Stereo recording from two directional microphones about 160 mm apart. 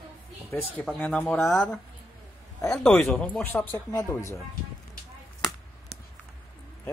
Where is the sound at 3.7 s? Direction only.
25° left (ahead or behind).